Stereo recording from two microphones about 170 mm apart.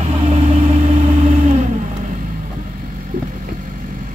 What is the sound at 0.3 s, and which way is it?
Vehicle, 45° right (ahead or behind).